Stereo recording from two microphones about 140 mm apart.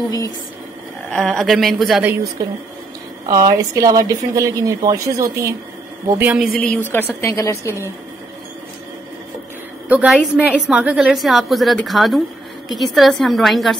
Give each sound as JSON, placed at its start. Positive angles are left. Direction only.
{"t": 1.1, "sound": "a woman's voice", "side_deg": 0}
{"t": 2.4, "sound": "a woman's voice", "side_deg": -25}
{"t": 6.1, "sound": "a woman's voice", "side_deg": -15}
{"t": 6.6, "sound": "a woman's voice", "side_deg": 10}
{"t": 9.8, "sound": "a woman's voice", "side_deg": -10}